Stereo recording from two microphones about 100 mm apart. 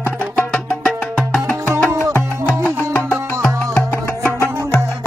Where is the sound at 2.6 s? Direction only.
10° left (ahead or behind).